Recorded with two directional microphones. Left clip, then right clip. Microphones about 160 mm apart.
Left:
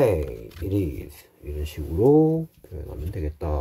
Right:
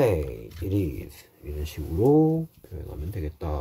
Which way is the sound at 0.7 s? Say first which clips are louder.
Left 2 dB; 25° left (ahead or behind).